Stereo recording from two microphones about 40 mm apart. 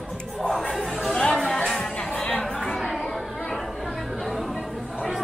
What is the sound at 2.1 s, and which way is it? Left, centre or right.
Chatter, left.